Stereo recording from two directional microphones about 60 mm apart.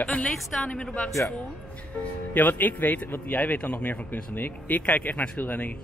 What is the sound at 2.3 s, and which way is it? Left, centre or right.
Speech, left.